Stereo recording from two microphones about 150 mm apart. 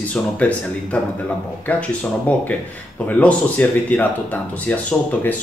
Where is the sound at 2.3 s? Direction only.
10° left (ahead or behind).